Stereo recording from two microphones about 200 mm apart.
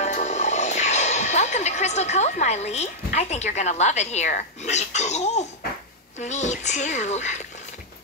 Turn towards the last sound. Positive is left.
turn(degrees=35)  # may be behind; listen again after turning